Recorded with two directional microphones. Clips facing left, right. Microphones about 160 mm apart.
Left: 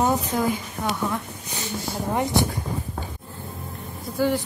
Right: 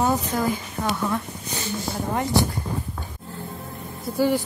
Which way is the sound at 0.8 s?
Centre (ahead or behind).